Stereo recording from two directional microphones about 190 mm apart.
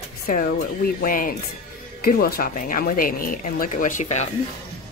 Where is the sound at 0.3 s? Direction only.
45° left (ahead or behind).